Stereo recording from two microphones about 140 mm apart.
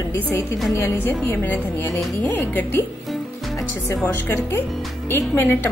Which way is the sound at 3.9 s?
15° left (ahead or behind).